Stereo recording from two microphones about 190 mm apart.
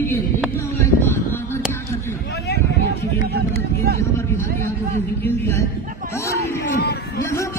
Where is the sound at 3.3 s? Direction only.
55° right (ahead or behind).